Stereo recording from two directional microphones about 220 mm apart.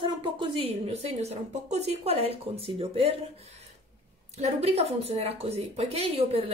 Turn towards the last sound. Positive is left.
turn(degrees=-25)  # may be behind; listen again after turning